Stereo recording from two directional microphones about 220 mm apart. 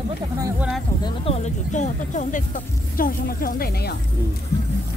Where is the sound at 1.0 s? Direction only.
25° left (ahead or behind); by 4.0 s 45° left (ahead or behind).